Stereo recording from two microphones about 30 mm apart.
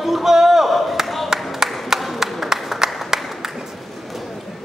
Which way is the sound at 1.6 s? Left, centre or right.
Centre.